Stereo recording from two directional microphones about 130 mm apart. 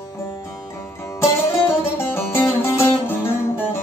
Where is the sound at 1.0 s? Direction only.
20° left (ahead or behind).